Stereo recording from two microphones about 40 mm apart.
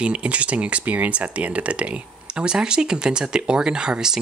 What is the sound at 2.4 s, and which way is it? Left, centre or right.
Speech, right.